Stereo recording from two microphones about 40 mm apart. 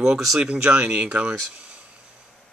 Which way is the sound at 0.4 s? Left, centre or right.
Right.